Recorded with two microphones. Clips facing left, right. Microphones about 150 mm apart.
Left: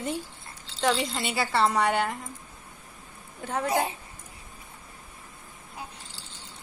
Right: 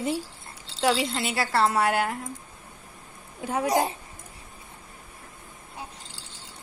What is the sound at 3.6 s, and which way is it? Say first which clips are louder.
Speech: right 3 dB; 35° right (ahead or behind).